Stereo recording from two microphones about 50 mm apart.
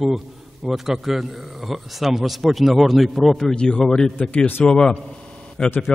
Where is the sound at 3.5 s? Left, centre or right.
Centre.